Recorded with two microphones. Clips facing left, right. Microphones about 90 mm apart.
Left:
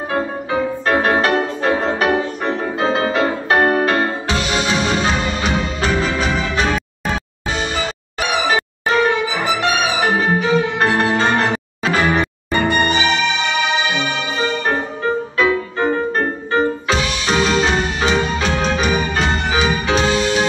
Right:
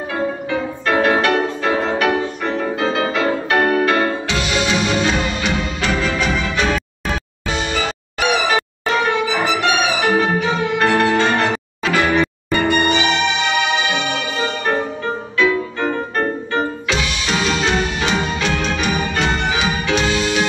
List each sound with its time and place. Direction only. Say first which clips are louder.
0.1 s music: left 1 dB; 35° left (ahead or behind)
15.3 s music: right 3 dB; 35° left (ahead or behind)